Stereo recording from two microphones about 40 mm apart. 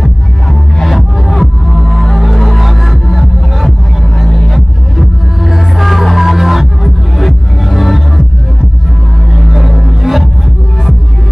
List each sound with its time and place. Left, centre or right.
0.0 s music: centre
4.9 s music: centre
9.3 s music: centre